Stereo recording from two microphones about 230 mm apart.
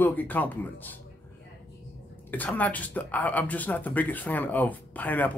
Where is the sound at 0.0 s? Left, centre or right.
Centre.